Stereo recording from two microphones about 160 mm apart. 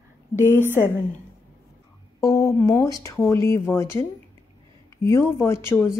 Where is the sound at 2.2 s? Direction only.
20° left (ahead or behind).